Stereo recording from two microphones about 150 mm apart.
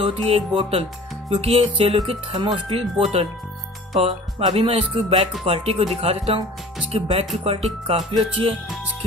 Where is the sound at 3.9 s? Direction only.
35° right (ahead or behind).